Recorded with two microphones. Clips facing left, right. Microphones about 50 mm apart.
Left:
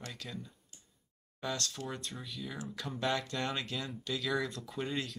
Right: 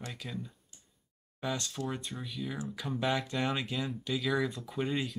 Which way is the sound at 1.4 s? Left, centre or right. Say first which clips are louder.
Right 3 dB; centre.